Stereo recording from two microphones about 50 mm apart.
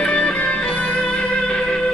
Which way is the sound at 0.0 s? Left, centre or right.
Centre.